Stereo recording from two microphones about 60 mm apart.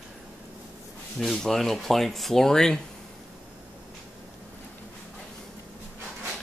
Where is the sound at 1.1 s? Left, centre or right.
Centre.